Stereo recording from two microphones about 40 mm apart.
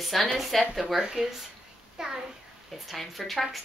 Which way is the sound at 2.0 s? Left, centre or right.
Centre.